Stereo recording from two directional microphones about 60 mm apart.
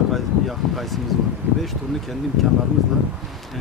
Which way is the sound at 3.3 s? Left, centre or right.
Centre.